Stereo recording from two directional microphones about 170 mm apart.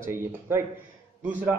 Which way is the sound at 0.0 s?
15° right (ahead or behind).